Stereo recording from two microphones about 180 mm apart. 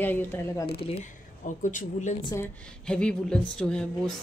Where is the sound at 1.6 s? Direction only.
45° left (ahead or behind).